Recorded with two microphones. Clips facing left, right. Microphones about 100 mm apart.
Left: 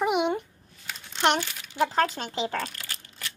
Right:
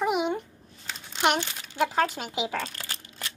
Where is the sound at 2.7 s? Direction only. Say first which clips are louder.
Right 2 dB; 25° right (ahead or behind).